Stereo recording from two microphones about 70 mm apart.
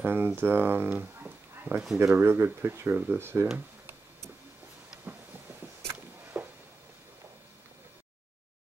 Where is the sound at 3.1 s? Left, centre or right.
Right.